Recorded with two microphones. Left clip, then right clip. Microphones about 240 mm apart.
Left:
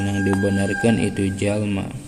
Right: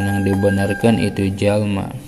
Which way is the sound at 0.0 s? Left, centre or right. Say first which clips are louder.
Right 4 dB; right.